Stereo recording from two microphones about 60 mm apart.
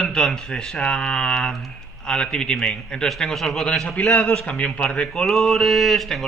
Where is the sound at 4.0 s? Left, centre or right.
Left.